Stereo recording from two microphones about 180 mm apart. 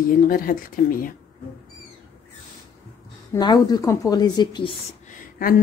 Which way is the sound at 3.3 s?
20° left (ahead or behind).